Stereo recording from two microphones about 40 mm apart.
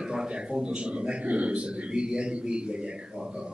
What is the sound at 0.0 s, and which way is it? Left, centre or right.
A man's voice, centre.